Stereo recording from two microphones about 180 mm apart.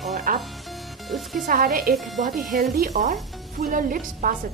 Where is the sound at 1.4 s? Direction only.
55° right (ahead or behind).